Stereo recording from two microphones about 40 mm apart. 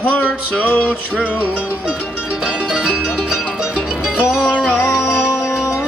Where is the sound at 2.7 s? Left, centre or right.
Centre.